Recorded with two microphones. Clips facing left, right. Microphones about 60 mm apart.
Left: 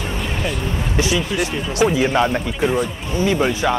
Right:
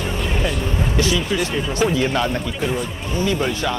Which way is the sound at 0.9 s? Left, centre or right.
Centre.